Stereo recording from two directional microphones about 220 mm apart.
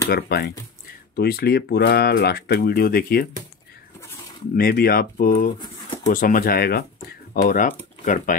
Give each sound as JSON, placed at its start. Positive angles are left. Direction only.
{"t": 0.1, "sound": "speech", "side_deg": 45}
{"t": 4.6, "sound": "speech", "side_deg": 45}